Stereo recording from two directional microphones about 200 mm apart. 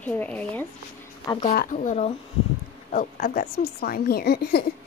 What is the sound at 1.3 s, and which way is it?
Speech, 20° left (ahead or behind).